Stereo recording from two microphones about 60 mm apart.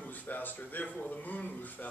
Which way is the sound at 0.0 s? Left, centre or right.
Left.